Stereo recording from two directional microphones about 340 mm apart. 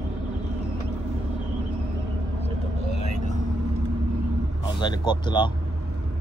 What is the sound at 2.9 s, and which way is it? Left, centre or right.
Vehicle, right.